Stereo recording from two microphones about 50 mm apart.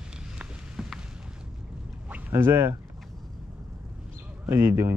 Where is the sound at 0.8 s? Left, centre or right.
Centre.